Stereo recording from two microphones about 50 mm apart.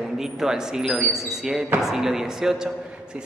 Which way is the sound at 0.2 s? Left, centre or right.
Centre.